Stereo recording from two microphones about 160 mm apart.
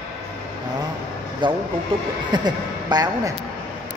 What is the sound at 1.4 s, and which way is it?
Speech, 30° right (ahead or behind).